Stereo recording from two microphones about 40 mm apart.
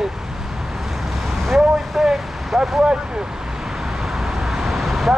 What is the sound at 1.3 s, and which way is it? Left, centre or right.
Speech, centre.